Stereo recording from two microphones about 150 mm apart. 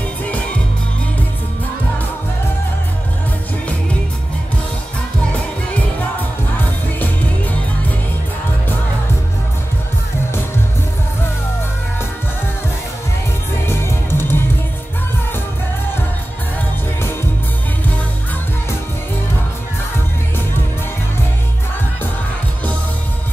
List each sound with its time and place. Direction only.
13.7 s music: 15° left (ahead or behind)